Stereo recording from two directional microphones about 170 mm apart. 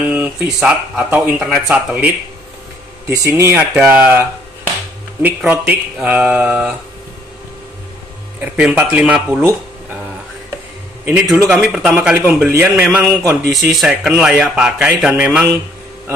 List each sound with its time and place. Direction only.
0.0 s speech: 10° right (ahead or behind)
3.1 s speech: 20° right (ahead or behind)
8.4 s speech: 10° right (ahead or behind)
11.2 s speech: 15° right (ahead or behind)
11.5 s speech: centre (ahead or behind)